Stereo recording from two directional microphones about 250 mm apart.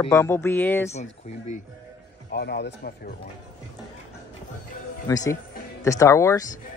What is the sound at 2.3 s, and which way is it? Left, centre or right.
Speech, left.